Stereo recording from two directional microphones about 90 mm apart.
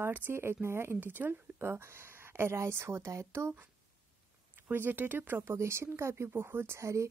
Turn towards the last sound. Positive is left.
turn(degrees=-30)  # may be behind; listen again after turning